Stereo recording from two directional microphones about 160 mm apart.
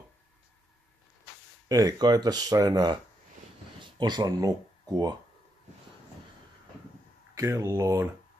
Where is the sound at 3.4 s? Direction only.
50° right (ahead or behind).